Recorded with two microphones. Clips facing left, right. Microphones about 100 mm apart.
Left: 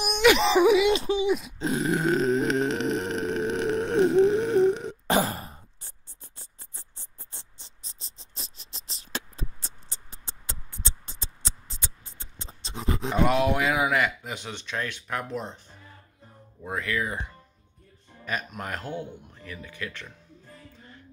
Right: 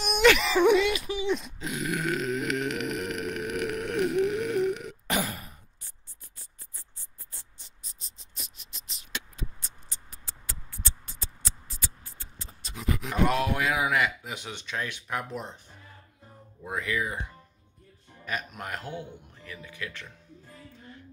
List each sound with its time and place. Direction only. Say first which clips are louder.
0.2 s speech: left 1 dB; 5° left (ahead or behind)
0.8 s speech: left 6 dB; 25° left (ahead or behind)
1.2 s speech: left 4 dB; 5° left (ahead or behind)
1.6 s grunt: left 6 dB; 30° left (ahead or behind)
13.3 s a sound: left 3 dB; centre (ahead or behind)
16.6 s speech: left 1 dB; 10° right (ahead or behind)